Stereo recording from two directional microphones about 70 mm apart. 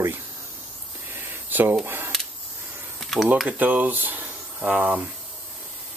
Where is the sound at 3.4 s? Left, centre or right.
Right.